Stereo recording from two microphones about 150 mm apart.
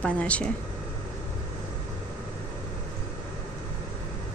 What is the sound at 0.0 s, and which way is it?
Speech, 5° left (ahead or behind).